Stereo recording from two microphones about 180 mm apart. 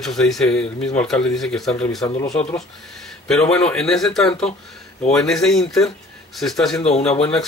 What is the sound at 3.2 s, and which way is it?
Speech, 5° left (ahead or behind).